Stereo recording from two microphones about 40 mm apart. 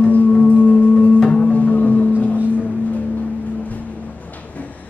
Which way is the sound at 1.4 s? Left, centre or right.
Left.